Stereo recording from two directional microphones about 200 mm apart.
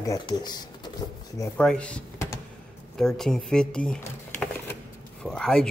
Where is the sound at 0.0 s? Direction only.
20° left (ahead or behind).